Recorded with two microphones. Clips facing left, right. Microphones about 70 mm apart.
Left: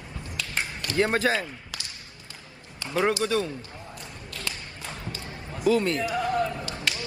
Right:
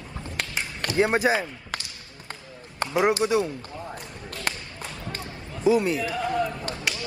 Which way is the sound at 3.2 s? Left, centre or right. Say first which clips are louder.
Right 3 dB; centre.